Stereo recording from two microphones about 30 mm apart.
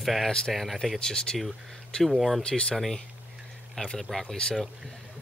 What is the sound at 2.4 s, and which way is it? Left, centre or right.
Speech, left.